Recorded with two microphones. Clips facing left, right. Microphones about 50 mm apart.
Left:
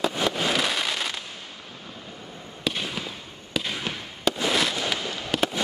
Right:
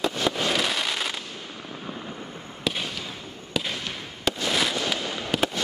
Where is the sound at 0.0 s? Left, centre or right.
Centre.